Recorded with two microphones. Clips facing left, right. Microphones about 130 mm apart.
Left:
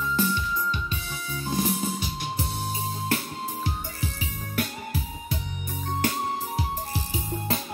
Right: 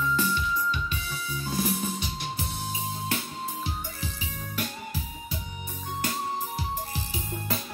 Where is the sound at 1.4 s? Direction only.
20° left (ahead or behind).